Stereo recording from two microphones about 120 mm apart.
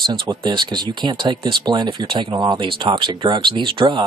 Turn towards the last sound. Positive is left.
turn(degrees=-45)  # may be behind; listen again after turning